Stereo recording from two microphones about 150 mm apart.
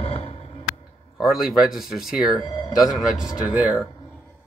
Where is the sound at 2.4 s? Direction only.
40° left (ahead or behind).